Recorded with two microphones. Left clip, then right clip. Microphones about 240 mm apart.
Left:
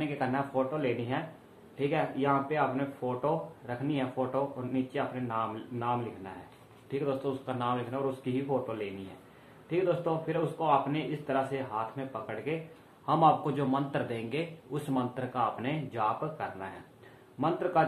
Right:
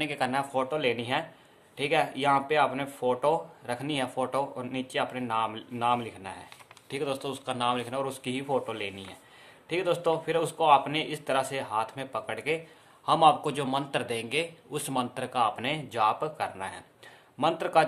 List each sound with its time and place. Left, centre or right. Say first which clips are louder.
0.0 s speech: right 3 dB; right